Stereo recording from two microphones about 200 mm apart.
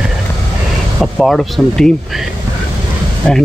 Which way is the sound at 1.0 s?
Centre (ahead or behind).